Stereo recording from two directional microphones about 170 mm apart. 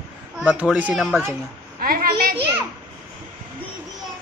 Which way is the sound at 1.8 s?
60° right (ahead or behind).